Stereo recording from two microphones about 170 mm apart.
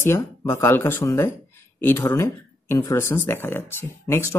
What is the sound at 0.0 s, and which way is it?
Speech, 15° left (ahead or behind).